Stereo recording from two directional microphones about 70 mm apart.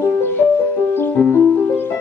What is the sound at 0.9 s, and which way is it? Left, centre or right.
Music, left.